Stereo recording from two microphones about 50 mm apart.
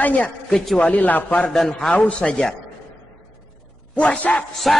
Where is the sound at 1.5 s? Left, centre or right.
Centre.